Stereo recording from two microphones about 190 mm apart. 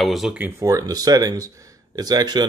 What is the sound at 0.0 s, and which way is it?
Speech, centre (ahead or behind).